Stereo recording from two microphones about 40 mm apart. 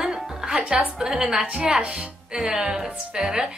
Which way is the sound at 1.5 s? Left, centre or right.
Right.